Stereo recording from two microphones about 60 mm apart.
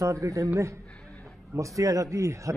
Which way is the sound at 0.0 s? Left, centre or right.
Right.